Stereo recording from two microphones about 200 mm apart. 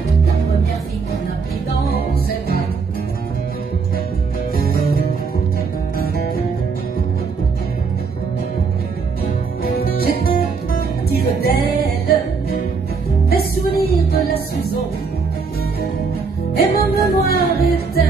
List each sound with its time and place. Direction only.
1.9 s music: 50° left (ahead or behind)
9.8 s music: 50° left (ahead or behind)
13.3 s music: 50° left (ahead or behind)
16.5 s music: 50° left (ahead or behind)